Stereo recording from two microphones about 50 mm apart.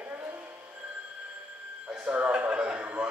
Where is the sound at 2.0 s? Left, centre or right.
Right.